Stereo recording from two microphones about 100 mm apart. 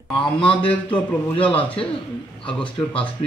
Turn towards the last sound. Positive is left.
turn(degrees=60)  # may be behind; listen again after turning